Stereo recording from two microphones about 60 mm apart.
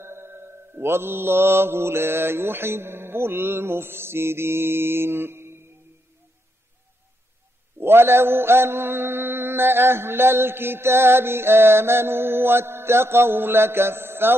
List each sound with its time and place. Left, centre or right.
0.0 s mantra: right
7.8 s mantra: right